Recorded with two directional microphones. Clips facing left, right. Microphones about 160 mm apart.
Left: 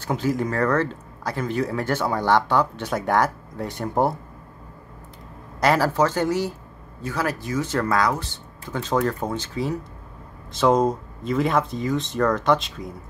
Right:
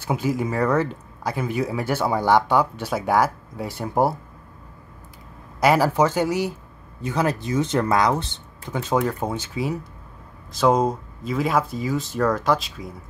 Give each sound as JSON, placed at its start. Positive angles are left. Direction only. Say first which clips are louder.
{"t": 0.0, "sound": "speech", "louder": "even", "side_deg": -10}
{"t": 5.6, "sound": "speech", "louder": "right 2 dB", "side_deg": -10}
{"t": 10.5, "sound": "speech", "louder": "even", "side_deg": 0}